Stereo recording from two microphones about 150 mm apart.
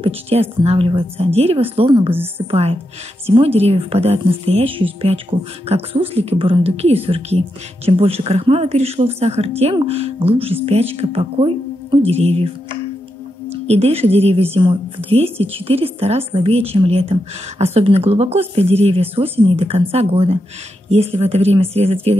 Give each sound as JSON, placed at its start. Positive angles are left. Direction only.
{"t": 0.0, "sound": "a woman's voice", "side_deg": -40}
{"t": 13.5, "sound": "a woman's voice", "side_deg": -45}